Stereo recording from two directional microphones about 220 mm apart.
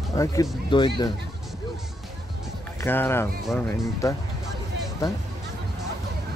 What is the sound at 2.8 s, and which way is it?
Speech, 10° left (ahead or behind).